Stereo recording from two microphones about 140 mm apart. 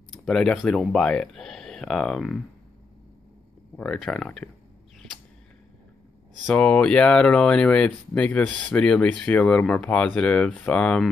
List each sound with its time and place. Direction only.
0.3 s speech: 5° left (ahead or behind)
3.7 s speech: 5° left (ahead or behind)
6.4 s speech: 5° left (ahead or behind)